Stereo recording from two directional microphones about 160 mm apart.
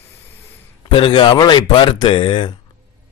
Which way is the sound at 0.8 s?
30° left (ahead or behind).